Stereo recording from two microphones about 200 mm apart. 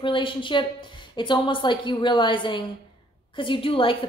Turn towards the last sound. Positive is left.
turn(degrees=25)  # may be behind; listen again after turning